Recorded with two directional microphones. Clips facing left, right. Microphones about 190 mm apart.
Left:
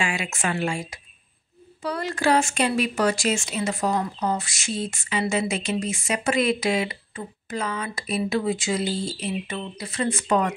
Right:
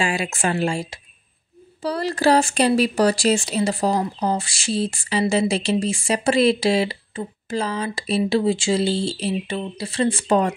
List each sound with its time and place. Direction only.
0.0 s speech: 35° right (ahead or behind)